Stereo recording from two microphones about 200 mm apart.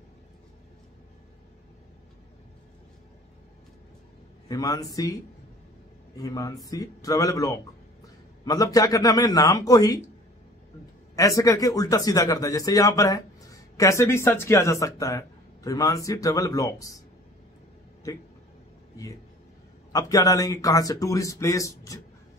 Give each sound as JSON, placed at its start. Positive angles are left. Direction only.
{"t": 4.5, "sound": "speech", "side_deg": 20}
{"t": 6.1, "sound": "speech", "side_deg": 15}
{"t": 11.1, "sound": "speech", "side_deg": 15}
{"t": 19.9, "sound": "speech", "side_deg": 15}